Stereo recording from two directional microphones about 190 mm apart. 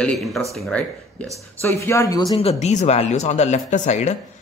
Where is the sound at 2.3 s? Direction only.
30° left (ahead or behind).